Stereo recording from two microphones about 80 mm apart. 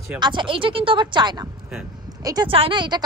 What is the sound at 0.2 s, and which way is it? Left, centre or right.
Speech, right.